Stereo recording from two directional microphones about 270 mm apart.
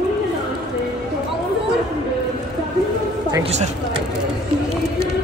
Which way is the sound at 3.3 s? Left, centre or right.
Right.